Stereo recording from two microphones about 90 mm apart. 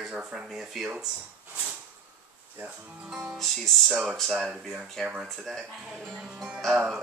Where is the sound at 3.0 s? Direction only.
5° right (ahead or behind).